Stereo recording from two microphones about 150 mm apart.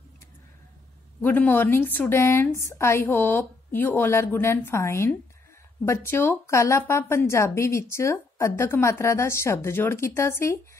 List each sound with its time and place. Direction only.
1.2 s speech: 15° left (ahead or behind)